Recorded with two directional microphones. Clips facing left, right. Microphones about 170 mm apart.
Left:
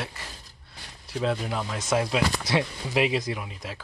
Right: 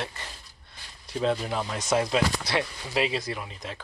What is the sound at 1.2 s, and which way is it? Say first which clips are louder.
Speech: right 1 dB; centre (ahead or behind).